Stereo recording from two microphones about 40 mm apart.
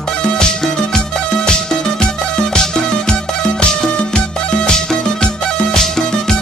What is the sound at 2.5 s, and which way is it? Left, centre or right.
Music, centre.